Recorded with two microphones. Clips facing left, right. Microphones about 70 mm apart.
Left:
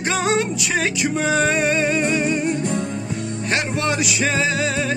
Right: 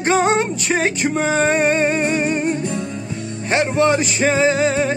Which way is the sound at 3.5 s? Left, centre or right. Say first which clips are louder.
Right 7 dB; right.